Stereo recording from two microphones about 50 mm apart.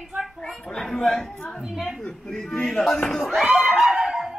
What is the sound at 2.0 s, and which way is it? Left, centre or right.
Speech, centre.